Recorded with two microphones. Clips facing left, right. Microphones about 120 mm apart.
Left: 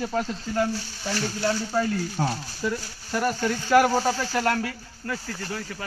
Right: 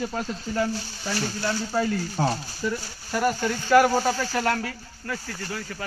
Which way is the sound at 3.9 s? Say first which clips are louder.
Even; centre (ahead or behind).